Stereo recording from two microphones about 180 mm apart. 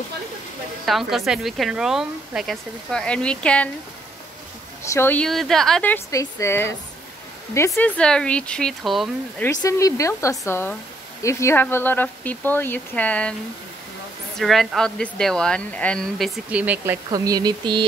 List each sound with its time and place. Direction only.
0.8 s speech: centre (ahead or behind)
4.8 s speech: 15° left (ahead or behind)
9.6 s speech: 20° left (ahead or behind)
14.4 s speech: centre (ahead or behind)
16.4 s speech: 10° right (ahead or behind)